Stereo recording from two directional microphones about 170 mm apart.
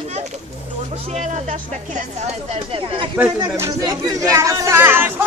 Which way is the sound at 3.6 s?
20° right (ahead or behind).